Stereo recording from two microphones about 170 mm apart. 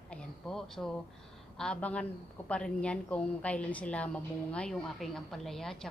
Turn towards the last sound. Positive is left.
turn(degrees=5)  # may be behind; listen again after turning